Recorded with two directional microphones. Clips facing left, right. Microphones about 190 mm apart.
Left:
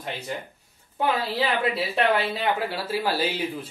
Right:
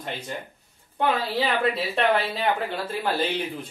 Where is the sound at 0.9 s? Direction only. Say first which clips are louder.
Right 1 dB; centre (ahead or behind).